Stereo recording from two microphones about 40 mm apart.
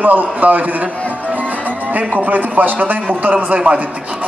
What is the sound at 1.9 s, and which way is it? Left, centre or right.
A man's voice, right.